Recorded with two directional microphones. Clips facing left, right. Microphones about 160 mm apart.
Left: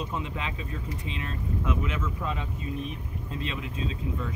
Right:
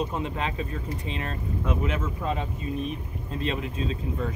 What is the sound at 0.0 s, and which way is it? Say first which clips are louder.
Speech: right 4 dB; 45° right (ahead or behind).